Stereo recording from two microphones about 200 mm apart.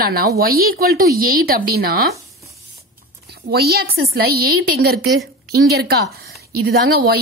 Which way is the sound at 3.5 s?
50° right (ahead or behind).